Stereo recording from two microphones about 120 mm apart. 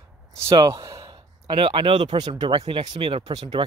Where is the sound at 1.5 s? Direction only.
50° right (ahead or behind).